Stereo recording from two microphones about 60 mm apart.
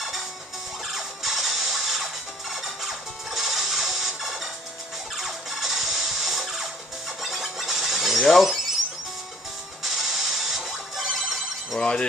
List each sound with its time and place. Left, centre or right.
0.9 s music: centre
9.8 s music: centre
11.8 s speech: centre